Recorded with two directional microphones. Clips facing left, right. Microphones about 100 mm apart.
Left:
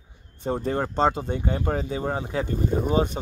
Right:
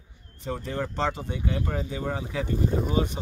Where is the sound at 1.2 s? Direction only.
45° left (ahead or behind).